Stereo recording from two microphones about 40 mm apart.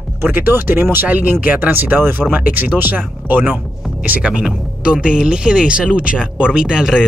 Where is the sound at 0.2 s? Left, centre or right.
Right.